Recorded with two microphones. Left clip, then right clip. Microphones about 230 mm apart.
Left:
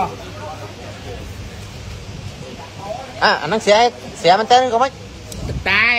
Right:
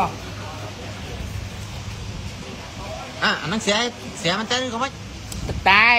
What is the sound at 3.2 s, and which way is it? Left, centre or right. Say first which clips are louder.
Speech: left 6 dB; left.